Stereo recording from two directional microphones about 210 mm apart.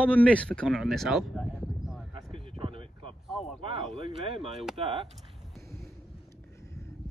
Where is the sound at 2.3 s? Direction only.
25° right (ahead or behind).